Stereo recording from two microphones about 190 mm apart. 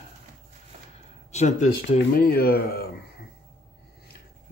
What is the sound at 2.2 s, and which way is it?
Speech, 55° left (ahead or behind).